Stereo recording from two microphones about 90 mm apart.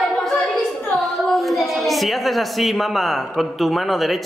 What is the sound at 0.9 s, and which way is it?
A child's voice, centre (ahead or behind).